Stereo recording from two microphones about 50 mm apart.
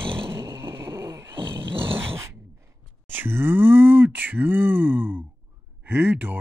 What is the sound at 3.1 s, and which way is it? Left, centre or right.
Speech, right.